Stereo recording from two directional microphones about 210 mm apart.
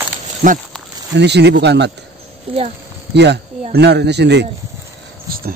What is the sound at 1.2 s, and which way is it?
Speech, 55° right (ahead or behind).